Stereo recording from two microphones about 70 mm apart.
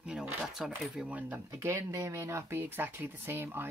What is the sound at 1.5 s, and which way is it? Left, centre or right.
Speech, right.